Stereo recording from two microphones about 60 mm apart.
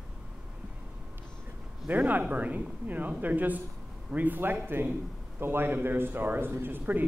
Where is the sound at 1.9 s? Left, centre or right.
Right.